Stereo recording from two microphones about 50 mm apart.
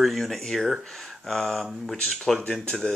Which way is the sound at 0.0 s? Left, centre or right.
Centre.